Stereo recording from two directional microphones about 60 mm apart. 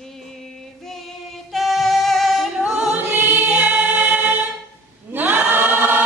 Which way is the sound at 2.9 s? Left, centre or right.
Right.